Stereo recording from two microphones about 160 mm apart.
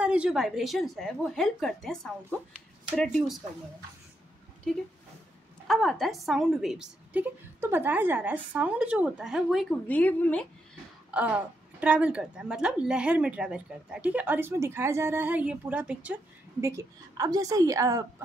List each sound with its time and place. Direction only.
0.0 s a woman's voice: 5° right (ahead or behind)
4.7 s a woman's voice: 5° left (ahead or behind)
11.1 s a woman's voice: 10° right (ahead or behind)
16.6 s a woman's voice: 20° right (ahead or behind)